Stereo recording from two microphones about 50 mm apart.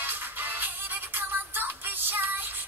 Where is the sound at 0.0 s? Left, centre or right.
Right.